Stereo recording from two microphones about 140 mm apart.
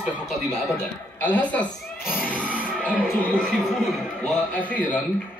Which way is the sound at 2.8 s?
10° right (ahead or behind).